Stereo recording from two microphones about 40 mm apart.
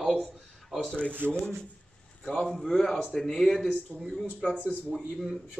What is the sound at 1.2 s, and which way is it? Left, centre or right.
Speech, right.